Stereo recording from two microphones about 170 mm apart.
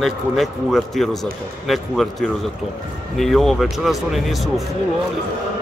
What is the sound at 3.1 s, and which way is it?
Speech, centre (ahead or behind).